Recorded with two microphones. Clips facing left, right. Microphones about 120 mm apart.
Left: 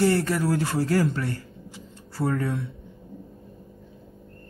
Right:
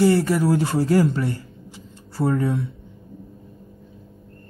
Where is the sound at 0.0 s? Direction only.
5° right (ahead or behind).